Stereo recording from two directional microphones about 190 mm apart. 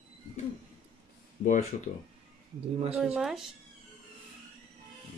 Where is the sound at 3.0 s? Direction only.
5° right (ahead or behind).